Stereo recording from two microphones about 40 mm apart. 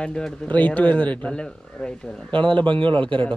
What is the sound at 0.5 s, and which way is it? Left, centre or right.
Speech, left.